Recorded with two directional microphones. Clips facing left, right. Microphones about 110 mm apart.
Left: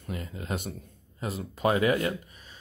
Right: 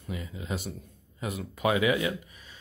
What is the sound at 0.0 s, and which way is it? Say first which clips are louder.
Speech: left 1 dB; 55° left (ahead or behind).